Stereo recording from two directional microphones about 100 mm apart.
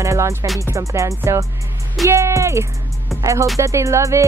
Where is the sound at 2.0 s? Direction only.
30° right (ahead or behind).